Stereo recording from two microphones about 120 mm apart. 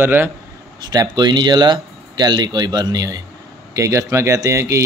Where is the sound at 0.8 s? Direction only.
35° right (ahead or behind).